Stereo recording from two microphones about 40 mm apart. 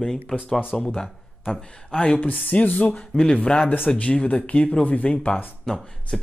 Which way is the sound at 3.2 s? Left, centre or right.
Left.